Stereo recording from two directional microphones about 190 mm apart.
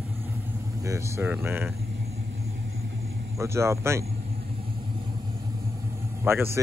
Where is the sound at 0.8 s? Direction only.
15° right (ahead or behind).